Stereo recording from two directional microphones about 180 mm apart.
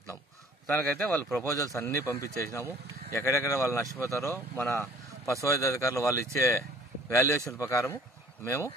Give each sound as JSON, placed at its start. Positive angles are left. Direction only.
{"t": 0.7, "sound": "speech", "side_deg": 10}